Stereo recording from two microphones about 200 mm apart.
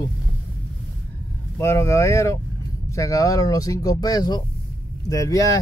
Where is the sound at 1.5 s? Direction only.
15° left (ahead or behind).